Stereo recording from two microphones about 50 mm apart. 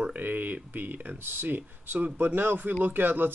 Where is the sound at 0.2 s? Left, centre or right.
Right.